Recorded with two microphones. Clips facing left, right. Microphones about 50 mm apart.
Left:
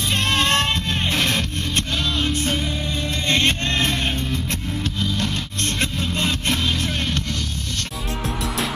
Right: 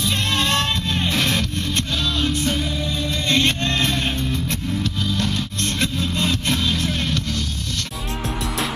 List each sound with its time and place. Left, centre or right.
0.3 s music: left
2.0 s music: centre
3.3 s music: left